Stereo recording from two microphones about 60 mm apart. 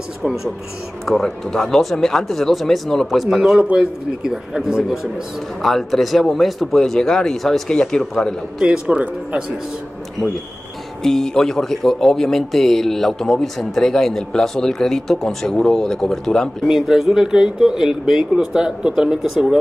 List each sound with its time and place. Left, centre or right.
1.0 s speech: centre
3.6 s speech: centre
5.6 s speech: centre
8.5 s speech: centre
8.8 s speech: right
11.0 s speech: centre
16.6 s speech: centre